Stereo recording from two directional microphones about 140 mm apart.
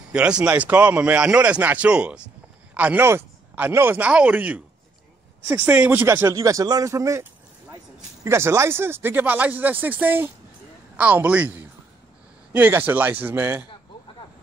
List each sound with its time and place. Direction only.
0.1 s speech: 5° right (ahead or behind)